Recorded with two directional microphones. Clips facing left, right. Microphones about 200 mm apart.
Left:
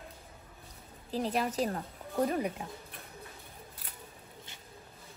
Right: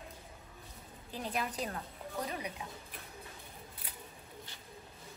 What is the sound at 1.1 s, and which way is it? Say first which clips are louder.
Speech: left 6 dB; 35° left (ahead or behind).